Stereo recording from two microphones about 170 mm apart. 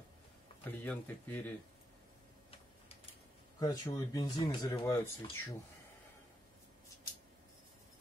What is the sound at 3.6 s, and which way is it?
Speech, 20° left (ahead or behind).